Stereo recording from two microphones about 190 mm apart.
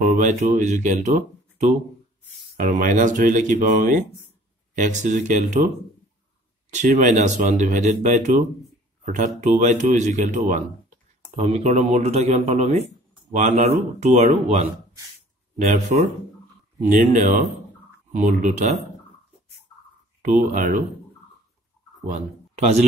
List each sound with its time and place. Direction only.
0.0 s speech: 40° right (ahead or behind)
6.7 s speech: 40° right (ahead or behind)
20.2 s speech: 40° right (ahead or behind)